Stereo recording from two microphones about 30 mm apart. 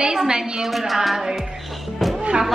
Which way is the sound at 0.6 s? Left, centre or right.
Centre.